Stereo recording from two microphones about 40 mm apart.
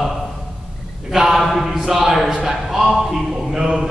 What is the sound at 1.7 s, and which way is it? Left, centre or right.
Speech, centre.